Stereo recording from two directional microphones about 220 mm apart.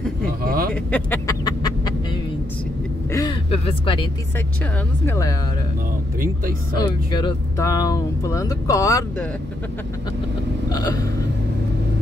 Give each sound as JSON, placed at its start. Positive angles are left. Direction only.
{"t": 0.4, "sound": "a sound", "side_deg": -40}
{"t": 0.9, "sound": "speech", "side_deg": 10}
{"t": 3.1, "sound": "a sound", "side_deg": 20}
{"t": 5.0, "sound": "speech", "side_deg": 10}
{"t": 7.1, "sound": "speech", "side_deg": 20}
{"t": 10.7, "sound": "speech", "side_deg": 20}